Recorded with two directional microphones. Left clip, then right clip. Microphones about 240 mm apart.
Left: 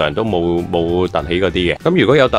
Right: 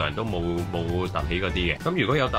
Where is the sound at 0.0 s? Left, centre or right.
Left.